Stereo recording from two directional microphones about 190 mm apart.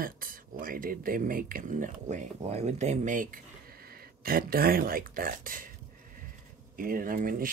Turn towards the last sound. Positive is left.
turn(degrees=-45)  # may be behind; listen again after turning